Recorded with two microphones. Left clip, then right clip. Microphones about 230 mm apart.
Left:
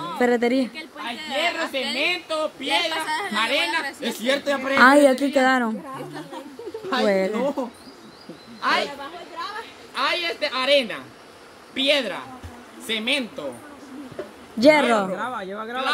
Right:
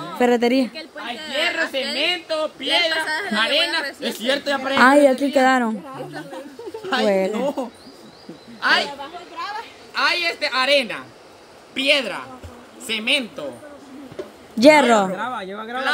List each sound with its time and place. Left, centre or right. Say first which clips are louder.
0.0 s speech: right 3 dB; centre
0.7 s a woman's voice: right 1 dB; centre
5.9 s a woman's voice: right 2 dB; centre
9.9 s a woman's voice: right 4 dB; centre
14.6 s a woman's voice: right 4 dB; centre